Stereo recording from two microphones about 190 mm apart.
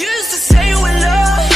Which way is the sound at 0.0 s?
Centre (ahead or behind).